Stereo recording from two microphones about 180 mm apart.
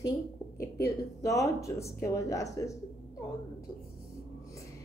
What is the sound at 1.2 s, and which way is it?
Speech, 15° left (ahead or behind).